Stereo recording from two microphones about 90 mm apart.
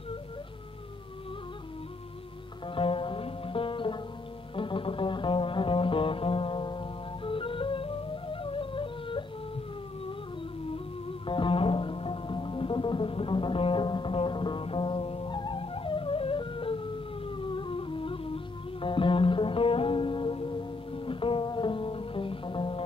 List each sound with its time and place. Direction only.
2.7 s music: 75° left (ahead or behind)
11.2 s music: 65° left (ahead or behind)